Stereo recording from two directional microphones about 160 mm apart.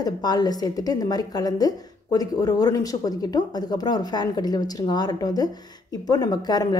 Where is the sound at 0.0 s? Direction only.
25° left (ahead or behind).